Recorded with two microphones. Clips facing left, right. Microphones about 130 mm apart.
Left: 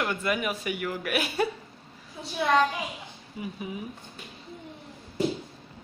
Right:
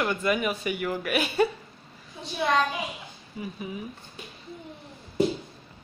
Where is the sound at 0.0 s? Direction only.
5° left (ahead or behind).